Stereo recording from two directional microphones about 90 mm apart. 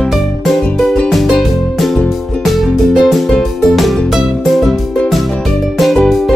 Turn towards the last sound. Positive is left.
turn(degrees=0)  # may be behind; listen again after turning